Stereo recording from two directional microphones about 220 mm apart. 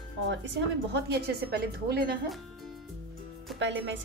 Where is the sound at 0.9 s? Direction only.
50° right (ahead or behind).